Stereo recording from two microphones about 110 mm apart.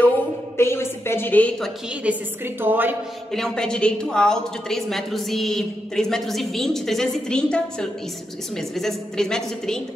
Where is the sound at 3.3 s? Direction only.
5° left (ahead or behind).